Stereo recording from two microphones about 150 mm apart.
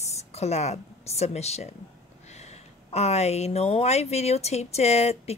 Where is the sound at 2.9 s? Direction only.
45° left (ahead or behind).